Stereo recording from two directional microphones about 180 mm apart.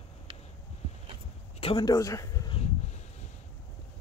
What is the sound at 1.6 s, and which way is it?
Speech, 30° left (ahead or behind).